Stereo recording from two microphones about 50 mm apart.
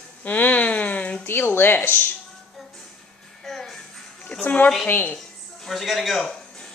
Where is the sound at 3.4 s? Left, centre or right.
Centre.